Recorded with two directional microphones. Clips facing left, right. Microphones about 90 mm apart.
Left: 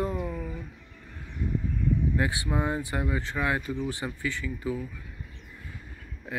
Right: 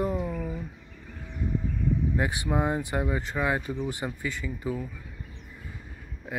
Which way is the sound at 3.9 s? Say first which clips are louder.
Even; 20° right (ahead or behind).